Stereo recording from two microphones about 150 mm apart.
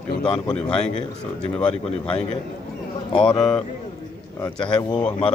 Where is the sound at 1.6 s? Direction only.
35° left (ahead or behind).